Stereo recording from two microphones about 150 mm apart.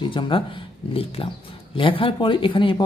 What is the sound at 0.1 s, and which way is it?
Speech, 35° left (ahead or behind).